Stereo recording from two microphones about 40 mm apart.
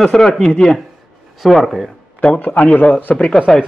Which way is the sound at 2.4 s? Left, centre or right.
Left.